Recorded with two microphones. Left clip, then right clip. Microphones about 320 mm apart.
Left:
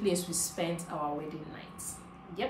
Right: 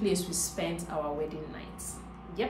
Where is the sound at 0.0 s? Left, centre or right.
Centre.